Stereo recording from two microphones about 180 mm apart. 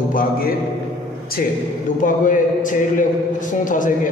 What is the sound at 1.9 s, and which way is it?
A man's voice, 45° left (ahead or behind).